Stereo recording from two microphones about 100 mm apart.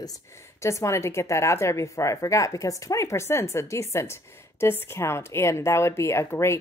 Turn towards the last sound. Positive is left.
turn(degrees=30)  # may be behind; listen again after turning